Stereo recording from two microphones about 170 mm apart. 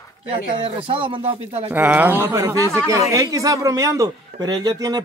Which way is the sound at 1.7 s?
10° right (ahead or behind).